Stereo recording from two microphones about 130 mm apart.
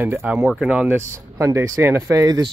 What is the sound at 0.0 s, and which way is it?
Speech, 15° right (ahead or behind).